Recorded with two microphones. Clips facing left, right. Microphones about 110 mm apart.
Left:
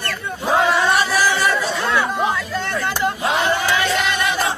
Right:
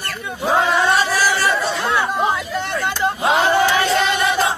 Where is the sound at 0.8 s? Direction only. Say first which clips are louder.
Even; 15° left (ahead or behind).